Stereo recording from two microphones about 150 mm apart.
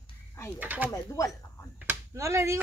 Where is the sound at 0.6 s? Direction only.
10° right (ahead or behind).